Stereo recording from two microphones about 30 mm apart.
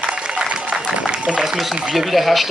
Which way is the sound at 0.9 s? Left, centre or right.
Right.